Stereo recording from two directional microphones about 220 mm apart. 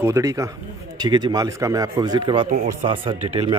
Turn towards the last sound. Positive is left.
turn(degrees=-25)  # may be behind; listen again after turning